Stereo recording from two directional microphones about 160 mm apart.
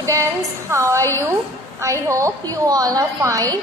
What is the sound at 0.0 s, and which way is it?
A woman's voice, 20° right (ahead or behind).